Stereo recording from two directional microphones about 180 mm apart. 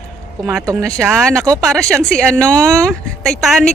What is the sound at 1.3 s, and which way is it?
Speech, 15° right (ahead or behind).